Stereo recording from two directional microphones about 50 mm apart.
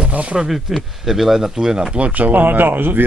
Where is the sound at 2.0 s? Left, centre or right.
Right.